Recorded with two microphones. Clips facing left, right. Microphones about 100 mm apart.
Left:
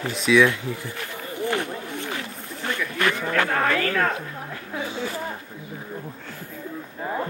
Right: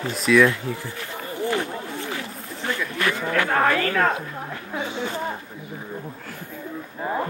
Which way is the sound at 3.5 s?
30° right (ahead or behind).